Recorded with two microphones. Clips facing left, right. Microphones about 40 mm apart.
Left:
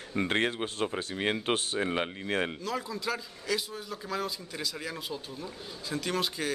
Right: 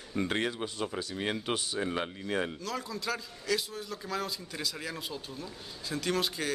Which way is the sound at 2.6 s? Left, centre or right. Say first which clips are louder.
Left 2 dB; centre.